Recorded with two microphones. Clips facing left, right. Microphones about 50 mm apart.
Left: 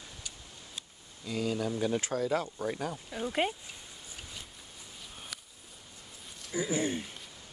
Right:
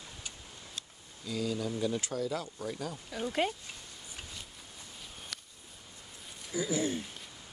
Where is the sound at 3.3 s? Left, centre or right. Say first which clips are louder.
Left 1 dB; centre.